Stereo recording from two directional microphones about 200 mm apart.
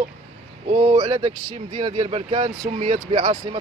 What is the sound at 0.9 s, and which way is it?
Speech, 30° right (ahead or behind).